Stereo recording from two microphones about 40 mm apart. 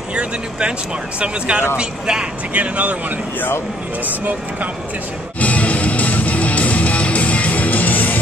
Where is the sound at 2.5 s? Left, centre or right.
Right.